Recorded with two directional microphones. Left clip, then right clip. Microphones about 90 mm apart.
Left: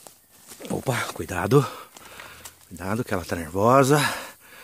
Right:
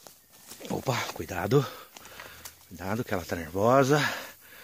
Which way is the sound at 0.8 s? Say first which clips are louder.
Left 3 dB; 30° left (ahead or behind).